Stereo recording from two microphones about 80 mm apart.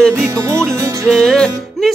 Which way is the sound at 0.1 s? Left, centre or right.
Right.